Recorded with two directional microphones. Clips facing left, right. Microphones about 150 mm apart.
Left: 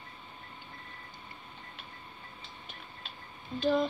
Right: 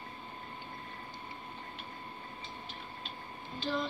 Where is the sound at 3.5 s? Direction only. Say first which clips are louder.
Left 8 dB; 55° left (ahead or behind).